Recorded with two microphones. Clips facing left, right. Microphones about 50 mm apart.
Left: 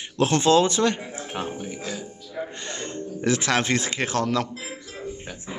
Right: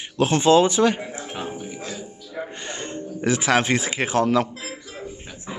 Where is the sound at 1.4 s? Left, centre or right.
Centre.